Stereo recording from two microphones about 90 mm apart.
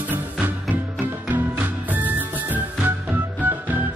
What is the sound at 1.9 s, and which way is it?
Music, 20° right (ahead or behind).